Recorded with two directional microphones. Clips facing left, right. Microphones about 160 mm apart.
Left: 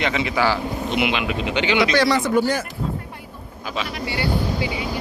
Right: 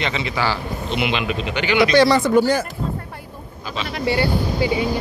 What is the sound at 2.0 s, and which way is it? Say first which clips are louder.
Speech: right 7 dB; 30° right (ahead or behind).